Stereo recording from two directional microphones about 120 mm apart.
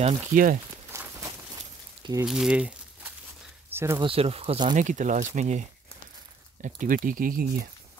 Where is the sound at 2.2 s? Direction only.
5° right (ahead or behind); by 4.0 s 20° right (ahead or behind).